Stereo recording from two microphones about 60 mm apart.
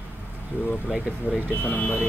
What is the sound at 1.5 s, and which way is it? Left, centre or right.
Speech, left.